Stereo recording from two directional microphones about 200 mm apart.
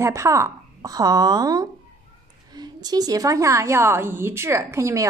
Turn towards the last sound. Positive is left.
turn(degrees=-15)  # may be behind; listen again after turning